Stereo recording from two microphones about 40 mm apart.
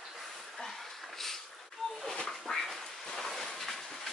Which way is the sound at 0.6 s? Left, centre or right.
Centre.